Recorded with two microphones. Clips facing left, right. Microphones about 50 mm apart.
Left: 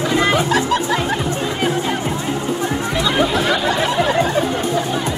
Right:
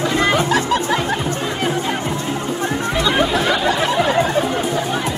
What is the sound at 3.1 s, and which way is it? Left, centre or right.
Chatter, centre.